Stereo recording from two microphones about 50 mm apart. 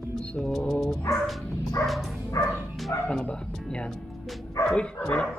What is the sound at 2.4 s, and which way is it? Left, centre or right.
Bow-wow, left.